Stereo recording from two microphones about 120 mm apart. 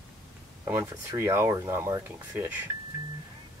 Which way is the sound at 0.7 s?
20° right (ahead or behind).